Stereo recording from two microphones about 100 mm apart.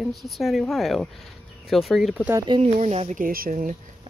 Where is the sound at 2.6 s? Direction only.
90° right.